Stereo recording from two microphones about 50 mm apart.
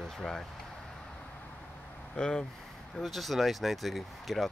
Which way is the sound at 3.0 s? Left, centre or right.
Centre.